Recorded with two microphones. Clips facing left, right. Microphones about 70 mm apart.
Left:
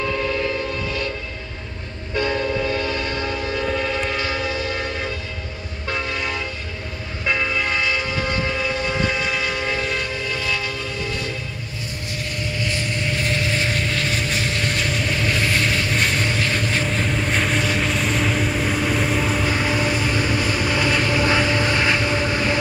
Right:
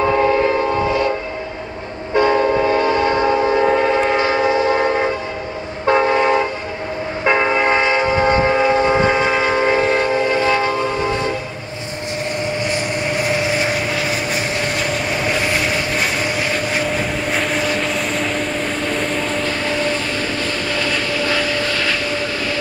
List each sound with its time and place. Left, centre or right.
0.0 s a sound: right
2.1 s train: right
12.4 s vehicle: right; by 22.6 s left